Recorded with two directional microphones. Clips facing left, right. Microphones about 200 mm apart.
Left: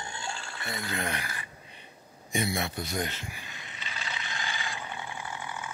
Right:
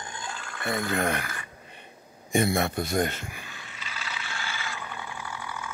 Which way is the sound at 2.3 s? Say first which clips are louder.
Right 6 dB; 50° right (ahead or behind).